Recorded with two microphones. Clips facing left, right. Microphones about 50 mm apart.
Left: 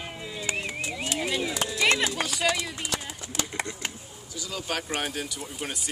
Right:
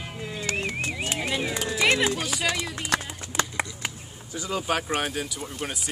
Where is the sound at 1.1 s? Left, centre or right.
Centre.